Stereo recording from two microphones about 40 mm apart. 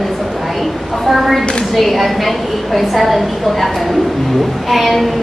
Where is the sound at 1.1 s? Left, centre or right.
Centre.